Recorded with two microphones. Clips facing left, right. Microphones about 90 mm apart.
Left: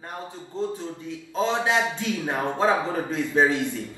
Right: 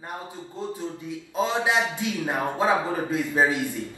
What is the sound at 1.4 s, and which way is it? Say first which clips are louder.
A man's voice: left 1 dB; 15° right (ahead or behind).